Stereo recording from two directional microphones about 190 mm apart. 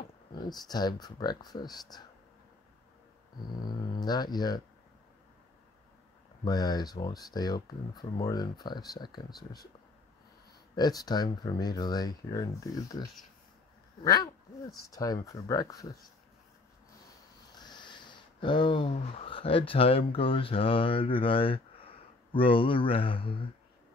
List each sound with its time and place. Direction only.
0.5 s speech: 20° left (ahead or behind)
4.0 s speech: 20° left (ahead or behind)
6.4 s speech: 20° left (ahead or behind)
10.8 s speech: 20° left (ahead or behind)
17.5 s speech: 20° left (ahead or behind)